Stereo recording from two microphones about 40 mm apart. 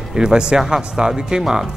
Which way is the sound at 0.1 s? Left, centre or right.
Centre.